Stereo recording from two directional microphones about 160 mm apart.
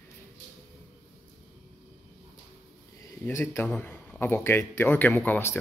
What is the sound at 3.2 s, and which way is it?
Speech, 15° left (ahead or behind).